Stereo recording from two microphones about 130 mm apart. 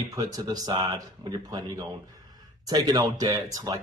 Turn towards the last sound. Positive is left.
turn(degrees=-25)  # may be behind; listen again after turning